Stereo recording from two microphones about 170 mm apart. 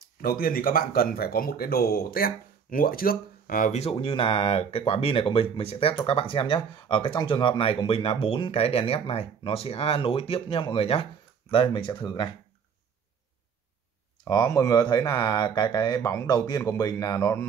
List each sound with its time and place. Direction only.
0.2 s speech: 60° left (ahead or behind); by 12.3 s 25° left (ahead or behind)
14.2 s speech: 20° left (ahead or behind)